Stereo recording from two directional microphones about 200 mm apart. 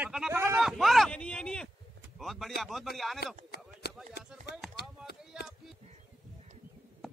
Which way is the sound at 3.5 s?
50° left (ahead or behind).